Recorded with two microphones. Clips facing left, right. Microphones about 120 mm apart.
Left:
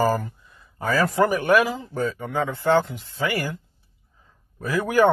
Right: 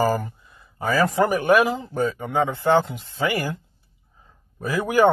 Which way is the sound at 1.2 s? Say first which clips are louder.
Even; 45° right (ahead or behind).